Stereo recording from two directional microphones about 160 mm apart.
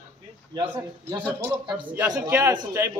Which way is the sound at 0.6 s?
25° right (ahead or behind).